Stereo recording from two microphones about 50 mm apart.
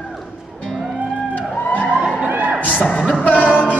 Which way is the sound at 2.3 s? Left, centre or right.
Right.